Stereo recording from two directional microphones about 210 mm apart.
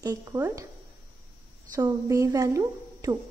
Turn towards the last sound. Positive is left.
turn(degrees=-15)  # may be behind; listen again after turning